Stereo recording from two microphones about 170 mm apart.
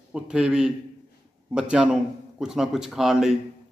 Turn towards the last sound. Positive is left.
turn(degrees=0)  # may be behind; listen again after turning